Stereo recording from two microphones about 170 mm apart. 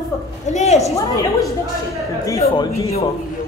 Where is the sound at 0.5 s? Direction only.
40° left (ahead or behind).